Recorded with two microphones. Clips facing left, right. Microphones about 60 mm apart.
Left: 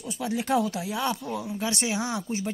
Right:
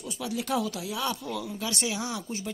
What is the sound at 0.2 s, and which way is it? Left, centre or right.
Speech, left.